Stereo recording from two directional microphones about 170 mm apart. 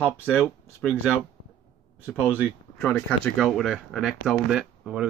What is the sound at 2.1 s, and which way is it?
Speech, 5° left (ahead or behind).